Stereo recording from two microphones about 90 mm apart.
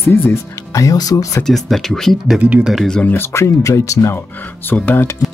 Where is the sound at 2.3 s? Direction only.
15° right (ahead or behind).